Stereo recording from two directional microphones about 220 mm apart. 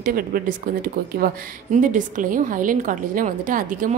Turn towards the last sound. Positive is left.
turn(degrees=-35)  # may be behind; listen again after turning